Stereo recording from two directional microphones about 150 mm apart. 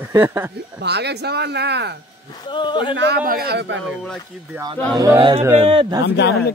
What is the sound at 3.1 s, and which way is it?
Speech, 80° right.